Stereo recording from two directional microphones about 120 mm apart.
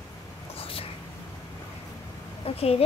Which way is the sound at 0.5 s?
55° left (ahead or behind).